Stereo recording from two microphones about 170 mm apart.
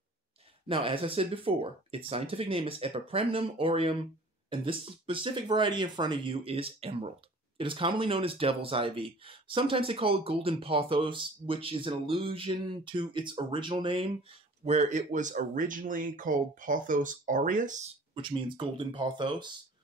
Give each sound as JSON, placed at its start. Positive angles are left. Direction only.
{"t": 0.7, "sound": "speech", "side_deg": -30}
{"t": 18.1, "sound": "speech", "side_deg": -30}